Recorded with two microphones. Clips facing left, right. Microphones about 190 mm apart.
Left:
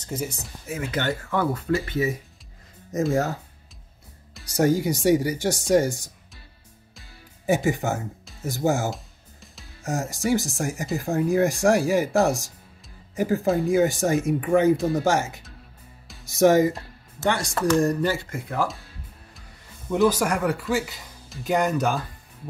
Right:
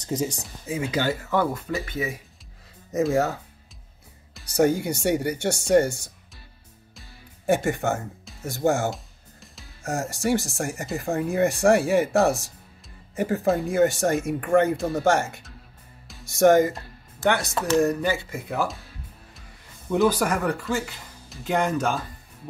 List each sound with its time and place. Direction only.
0.0 s speech: 15° right (ahead or behind)
2.9 s speech: centre (ahead or behind)
4.6 s speech: 60° right (ahead or behind)
4.9 s speech: centre (ahead or behind)
7.0 s music: centre (ahead or behind)
10.4 s speech: centre (ahead or behind)
19.9 s speech: centre (ahead or behind)